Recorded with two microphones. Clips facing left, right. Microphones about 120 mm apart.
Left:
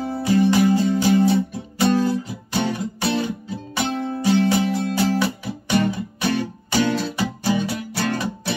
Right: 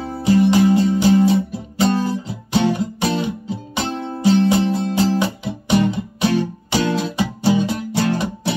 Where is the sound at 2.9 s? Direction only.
20° right (ahead or behind).